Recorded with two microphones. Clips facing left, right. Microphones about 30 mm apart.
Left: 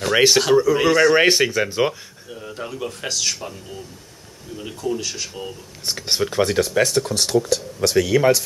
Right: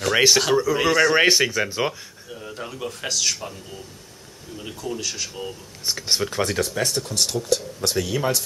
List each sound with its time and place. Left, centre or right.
0.0 s speech: centre
7.0 s speech: left
7.4 s speech: centre